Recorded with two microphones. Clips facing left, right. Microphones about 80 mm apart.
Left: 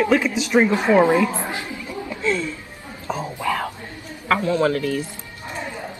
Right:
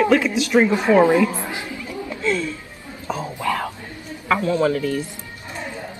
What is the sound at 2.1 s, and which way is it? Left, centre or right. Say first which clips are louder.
Speech: even; centre.